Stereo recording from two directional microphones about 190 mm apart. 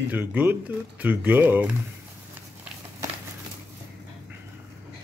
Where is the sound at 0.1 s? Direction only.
10° right (ahead or behind).